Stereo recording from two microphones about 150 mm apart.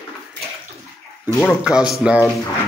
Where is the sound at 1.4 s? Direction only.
Centre (ahead or behind).